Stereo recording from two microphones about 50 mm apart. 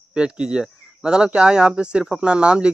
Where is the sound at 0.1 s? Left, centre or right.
Centre.